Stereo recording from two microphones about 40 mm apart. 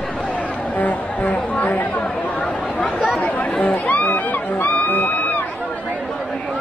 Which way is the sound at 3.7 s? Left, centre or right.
Left.